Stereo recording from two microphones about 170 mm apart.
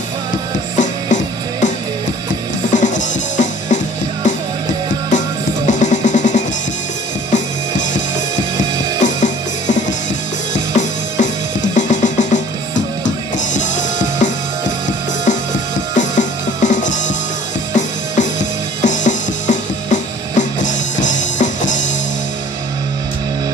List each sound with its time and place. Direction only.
0.7 s music: 45° left (ahead or behind)
2.7 s music: 45° left (ahead or behind)
5.7 s music: 45° left (ahead or behind)
9.0 s music: 45° left (ahead or behind)
15.9 s music: 45° left (ahead or behind)